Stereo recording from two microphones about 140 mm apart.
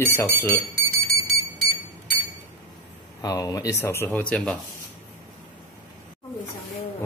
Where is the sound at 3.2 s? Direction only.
25° left (ahead or behind); by 4.6 s 10° left (ahead or behind).